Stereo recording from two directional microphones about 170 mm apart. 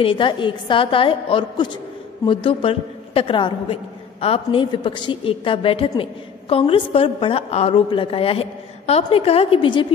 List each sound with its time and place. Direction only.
0.0 s a woman's voice: 30° left (ahead or behind)